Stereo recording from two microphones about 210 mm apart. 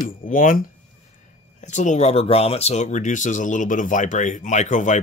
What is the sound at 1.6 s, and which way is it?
Speech, 35° left (ahead or behind).